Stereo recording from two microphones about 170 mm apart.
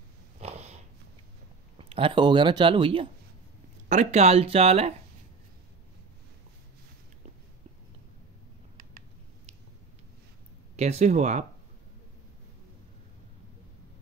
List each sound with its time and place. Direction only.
0.4 s snort: 40° right (ahead or behind)
1.8 s speech: 30° right (ahead or behind)
3.9 s speech: 40° right (ahead or behind)
10.8 s speech: 40° right (ahead or behind)